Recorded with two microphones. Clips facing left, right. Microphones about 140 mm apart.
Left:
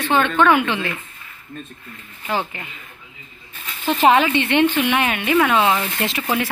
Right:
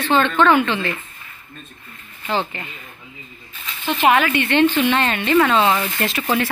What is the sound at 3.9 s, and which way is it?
Speech, 35° left (ahead or behind).